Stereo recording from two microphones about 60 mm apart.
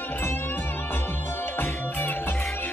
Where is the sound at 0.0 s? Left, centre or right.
Left.